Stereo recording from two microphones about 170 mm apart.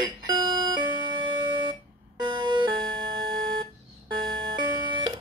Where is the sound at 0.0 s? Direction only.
25° right (ahead or behind).